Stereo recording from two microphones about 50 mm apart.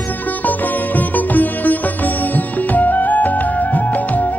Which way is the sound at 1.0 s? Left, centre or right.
Left.